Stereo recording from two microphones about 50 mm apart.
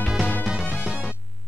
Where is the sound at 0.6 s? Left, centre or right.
Left.